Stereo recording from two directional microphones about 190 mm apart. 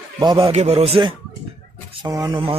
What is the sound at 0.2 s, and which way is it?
Speech, 25° right (ahead or behind).